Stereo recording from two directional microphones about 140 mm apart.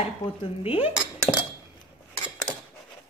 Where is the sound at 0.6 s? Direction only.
40° left (ahead or behind).